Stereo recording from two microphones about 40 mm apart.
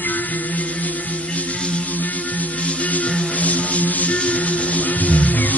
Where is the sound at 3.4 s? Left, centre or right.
Left.